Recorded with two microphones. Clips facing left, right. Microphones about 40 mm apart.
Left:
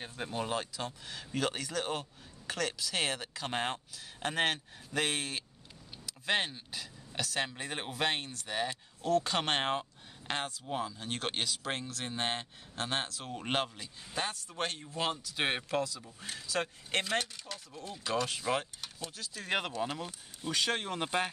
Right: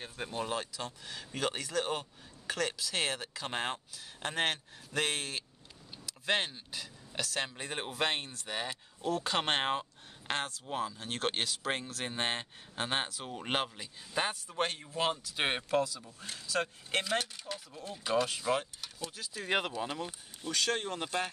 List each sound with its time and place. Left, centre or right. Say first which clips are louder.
0.0 s speech: left 1 dB; centre
18.3 s speech: right 1 dB; centre
20.4 s speech: even; centre
21.0 s speech: left 2 dB; left